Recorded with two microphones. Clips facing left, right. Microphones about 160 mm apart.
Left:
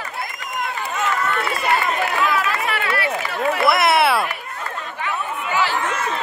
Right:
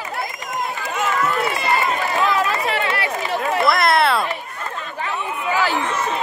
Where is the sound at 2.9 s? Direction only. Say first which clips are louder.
Right 1 dB; 20° right (ahead or behind).